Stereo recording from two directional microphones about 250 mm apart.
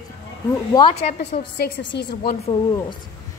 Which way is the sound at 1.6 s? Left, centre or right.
Left.